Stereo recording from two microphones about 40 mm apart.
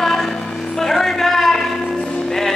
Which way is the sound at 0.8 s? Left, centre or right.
Centre.